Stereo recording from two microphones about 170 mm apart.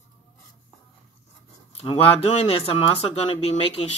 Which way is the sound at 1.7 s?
35° left (ahead or behind).